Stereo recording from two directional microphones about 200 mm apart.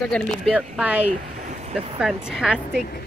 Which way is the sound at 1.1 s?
40° right (ahead or behind).